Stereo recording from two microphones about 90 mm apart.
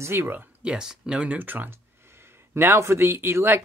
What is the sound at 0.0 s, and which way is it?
Speech, 25° right (ahead or behind).